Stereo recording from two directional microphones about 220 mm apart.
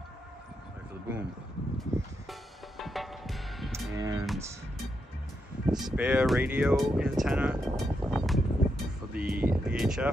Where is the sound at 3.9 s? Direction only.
15° right (ahead or behind).